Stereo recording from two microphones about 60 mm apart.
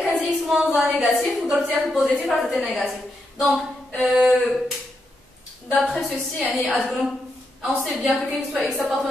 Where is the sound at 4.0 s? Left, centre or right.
Centre.